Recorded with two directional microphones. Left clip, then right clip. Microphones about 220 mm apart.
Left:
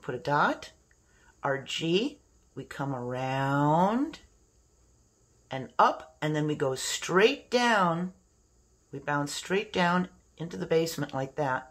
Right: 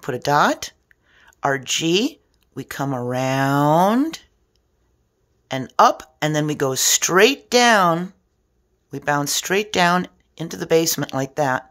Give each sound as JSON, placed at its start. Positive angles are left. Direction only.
{"t": 0.0, "sound": "speech", "side_deg": -45}
{"t": 5.5, "sound": "speech", "side_deg": -45}